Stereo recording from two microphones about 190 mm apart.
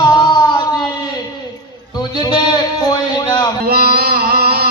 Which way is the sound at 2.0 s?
25° left (ahead or behind).